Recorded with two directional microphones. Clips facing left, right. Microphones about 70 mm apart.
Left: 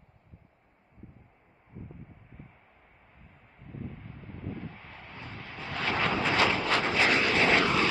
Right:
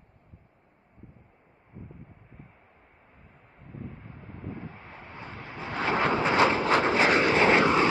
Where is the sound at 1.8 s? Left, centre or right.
Centre.